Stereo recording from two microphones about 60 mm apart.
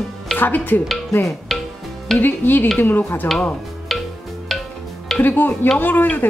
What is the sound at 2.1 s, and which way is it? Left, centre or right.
Speech, left.